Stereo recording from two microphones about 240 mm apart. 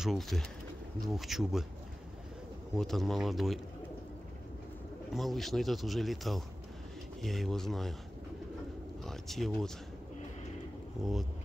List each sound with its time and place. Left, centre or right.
0.0 s a man's voice: centre
2.7 s a man's voice: centre
5.1 s a man's voice: centre
9.0 s speech: centre
11.0 s a man's voice: centre